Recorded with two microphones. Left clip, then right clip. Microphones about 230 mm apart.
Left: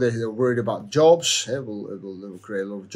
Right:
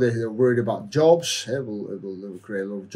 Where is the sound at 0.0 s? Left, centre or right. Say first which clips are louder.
Right 1 dB; centre.